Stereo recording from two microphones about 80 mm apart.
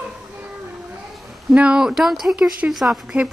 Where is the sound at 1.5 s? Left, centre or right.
Centre.